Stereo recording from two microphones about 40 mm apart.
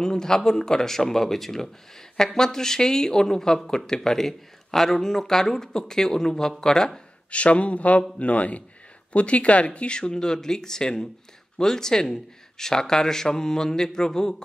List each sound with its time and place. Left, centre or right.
0.0 s speech: centre
7.2 s speech: left; by 14.3 s centre